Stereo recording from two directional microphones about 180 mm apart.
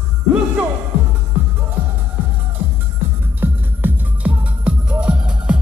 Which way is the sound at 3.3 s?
10° right (ahead or behind).